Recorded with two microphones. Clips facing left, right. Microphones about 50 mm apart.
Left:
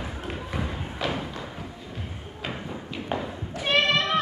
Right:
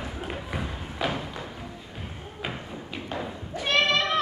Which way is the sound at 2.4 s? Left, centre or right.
Centre.